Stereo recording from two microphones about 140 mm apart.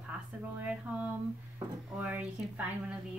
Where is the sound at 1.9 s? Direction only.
10° right (ahead or behind).